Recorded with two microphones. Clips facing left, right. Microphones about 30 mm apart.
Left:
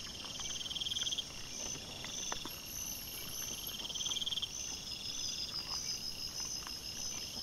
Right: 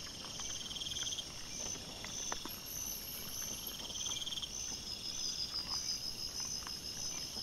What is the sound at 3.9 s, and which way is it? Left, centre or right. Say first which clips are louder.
Frog: left 4 dB; centre.